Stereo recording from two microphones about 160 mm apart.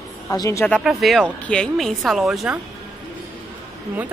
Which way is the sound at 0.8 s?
Centre (ahead or behind).